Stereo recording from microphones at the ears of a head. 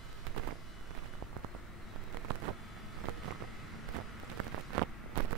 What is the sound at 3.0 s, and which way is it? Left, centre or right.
Vehicle, right.